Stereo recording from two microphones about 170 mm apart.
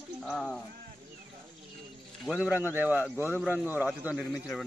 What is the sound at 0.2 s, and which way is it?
Speech, 5° left (ahead or behind).